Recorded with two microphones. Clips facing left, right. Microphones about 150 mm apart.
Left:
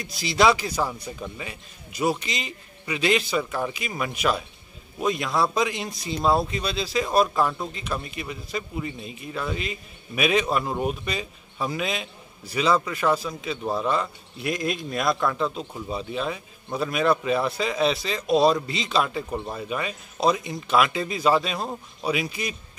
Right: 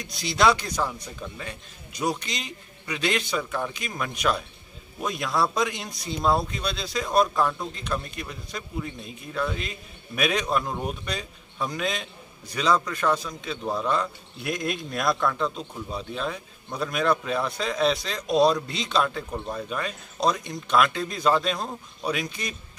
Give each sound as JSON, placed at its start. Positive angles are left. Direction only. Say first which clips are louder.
{"t": 0.0, "sound": "a man's voice", "louder": "left 2 dB", "side_deg": 0}